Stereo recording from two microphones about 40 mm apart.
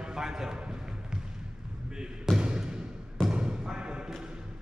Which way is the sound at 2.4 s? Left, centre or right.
Right.